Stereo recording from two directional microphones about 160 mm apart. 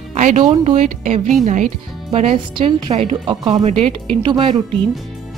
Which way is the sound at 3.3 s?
25° right (ahead or behind).